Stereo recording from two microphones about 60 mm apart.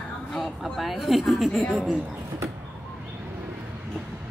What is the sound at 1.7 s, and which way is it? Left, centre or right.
Speech, centre.